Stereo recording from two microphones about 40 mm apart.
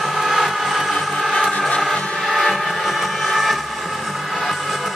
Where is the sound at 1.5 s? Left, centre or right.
Centre.